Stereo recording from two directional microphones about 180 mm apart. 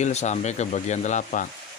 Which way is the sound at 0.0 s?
40° left (ahead or behind).